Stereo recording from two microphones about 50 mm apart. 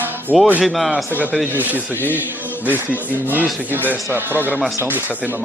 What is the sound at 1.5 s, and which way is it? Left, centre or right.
A man's voice, right.